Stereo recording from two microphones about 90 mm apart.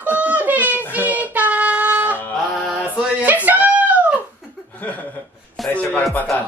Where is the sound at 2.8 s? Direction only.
15° right (ahead or behind).